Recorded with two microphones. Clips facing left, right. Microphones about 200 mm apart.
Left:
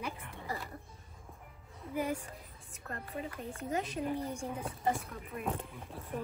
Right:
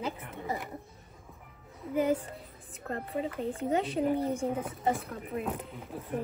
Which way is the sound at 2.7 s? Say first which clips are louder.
Right 7 dB; 30° right (ahead or behind).